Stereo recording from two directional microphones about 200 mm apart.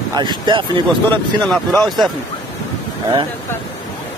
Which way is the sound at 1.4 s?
Centre (ahead or behind).